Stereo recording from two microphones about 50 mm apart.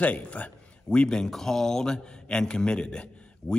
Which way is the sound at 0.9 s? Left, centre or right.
Centre.